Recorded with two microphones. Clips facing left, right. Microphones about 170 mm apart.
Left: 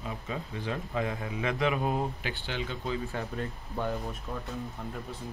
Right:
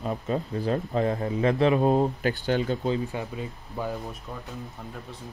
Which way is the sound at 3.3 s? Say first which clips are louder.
Right 1 dB; 5° right (ahead or behind).